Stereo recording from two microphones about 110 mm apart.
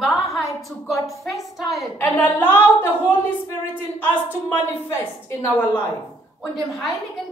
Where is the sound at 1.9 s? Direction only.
15° left (ahead or behind).